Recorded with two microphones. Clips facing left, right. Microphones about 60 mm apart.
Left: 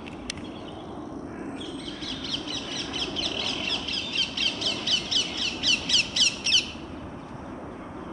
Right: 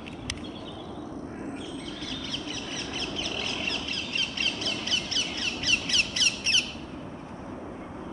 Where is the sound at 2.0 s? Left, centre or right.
Right.